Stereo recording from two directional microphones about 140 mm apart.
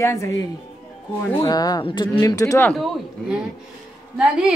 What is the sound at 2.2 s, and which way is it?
Speech, 25° left (ahead or behind).